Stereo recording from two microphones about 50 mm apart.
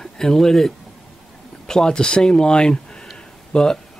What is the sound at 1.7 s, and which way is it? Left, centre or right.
Speech, centre.